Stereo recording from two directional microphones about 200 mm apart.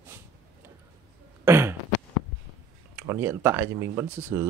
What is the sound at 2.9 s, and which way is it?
Speech, 10° right (ahead or behind).